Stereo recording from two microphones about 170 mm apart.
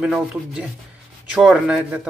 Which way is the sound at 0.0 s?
5° right (ahead or behind).